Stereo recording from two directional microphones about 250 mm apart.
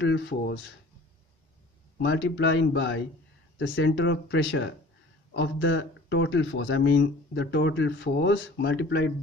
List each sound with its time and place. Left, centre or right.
0.0 s speech: left
2.0 s speech: left